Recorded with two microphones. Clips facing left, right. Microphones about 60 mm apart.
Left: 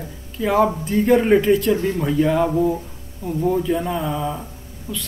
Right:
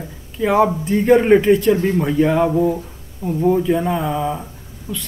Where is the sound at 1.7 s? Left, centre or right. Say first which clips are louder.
Right 4 dB; right.